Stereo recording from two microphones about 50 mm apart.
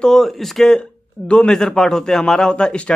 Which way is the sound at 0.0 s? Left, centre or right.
Centre.